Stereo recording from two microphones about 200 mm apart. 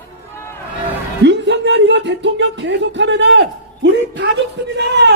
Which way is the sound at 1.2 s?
60° right (ahead or behind).